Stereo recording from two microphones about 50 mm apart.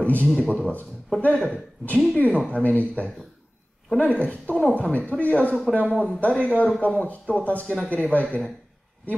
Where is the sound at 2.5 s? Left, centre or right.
Left.